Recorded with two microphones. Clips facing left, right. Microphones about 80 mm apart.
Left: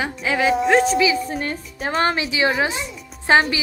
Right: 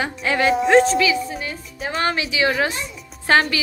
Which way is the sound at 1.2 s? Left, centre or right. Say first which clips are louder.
Left 3 dB; left.